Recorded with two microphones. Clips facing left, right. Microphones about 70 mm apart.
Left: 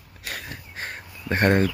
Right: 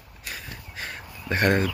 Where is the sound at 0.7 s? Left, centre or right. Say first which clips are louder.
Even; left.